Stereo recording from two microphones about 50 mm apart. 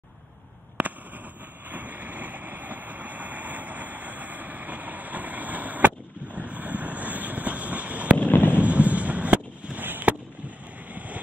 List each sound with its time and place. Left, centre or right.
1.7 s vehicle: right
8.2 s fireworks: left
8.5 s a sound: right
9.8 s fireworks: right